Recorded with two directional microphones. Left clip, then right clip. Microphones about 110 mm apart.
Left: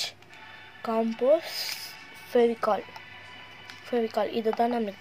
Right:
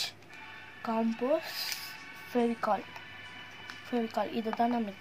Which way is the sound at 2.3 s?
90° left.